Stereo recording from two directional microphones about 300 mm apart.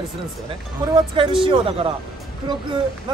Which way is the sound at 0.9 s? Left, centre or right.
Centre.